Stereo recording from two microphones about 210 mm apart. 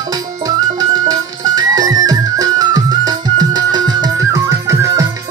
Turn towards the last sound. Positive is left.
turn(degrees=-15)  # may be behind; listen again after turning